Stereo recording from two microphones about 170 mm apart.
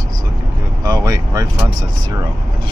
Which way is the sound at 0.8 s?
20° right (ahead or behind).